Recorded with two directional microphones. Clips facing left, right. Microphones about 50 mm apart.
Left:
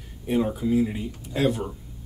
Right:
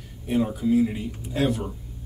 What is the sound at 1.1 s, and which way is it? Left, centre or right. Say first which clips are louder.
Speech: left 3 dB; centre.